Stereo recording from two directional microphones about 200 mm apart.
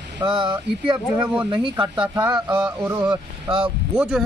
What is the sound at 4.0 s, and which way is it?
Speech, 5° right (ahead or behind).